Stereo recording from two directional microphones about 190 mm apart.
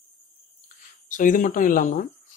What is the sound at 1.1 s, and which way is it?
Speech, 45° left (ahead or behind).